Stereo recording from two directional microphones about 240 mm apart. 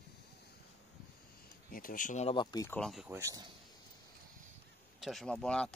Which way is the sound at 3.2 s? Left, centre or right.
Centre.